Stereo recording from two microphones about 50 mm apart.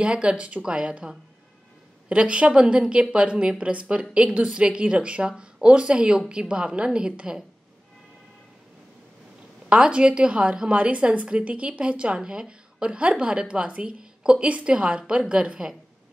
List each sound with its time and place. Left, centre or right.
0.0 s a woman's voice: right
9.7 s a woman's voice: right